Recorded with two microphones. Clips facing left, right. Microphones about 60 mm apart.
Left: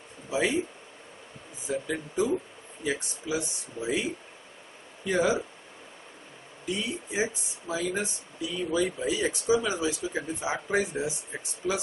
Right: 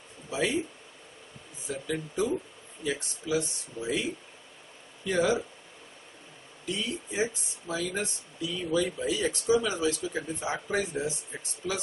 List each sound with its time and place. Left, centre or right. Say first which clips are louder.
0.3 s speech: left 2 dB; centre
1.7 s speech: left 2 dB; centre
5.0 s speech: left 1 dB; centre
6.6 s speech: left 1 dB; centre